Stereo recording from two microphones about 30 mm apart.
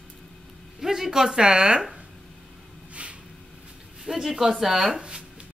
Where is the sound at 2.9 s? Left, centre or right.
Right.